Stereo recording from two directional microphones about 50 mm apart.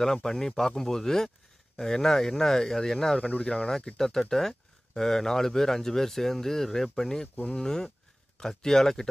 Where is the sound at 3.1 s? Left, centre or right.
Left.